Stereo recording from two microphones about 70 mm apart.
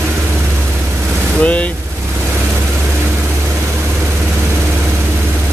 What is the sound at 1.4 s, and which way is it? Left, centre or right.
Speech, centre.